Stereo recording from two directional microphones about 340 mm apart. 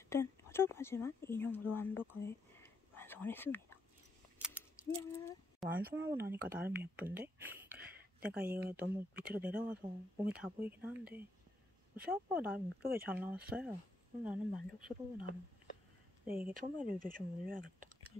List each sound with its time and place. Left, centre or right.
0.1 s speech: centre
5.2 s speech: centre
8.5 s speech: right
8.7 s speech: centre
16.3 s speech: centre
16.5 s speech: right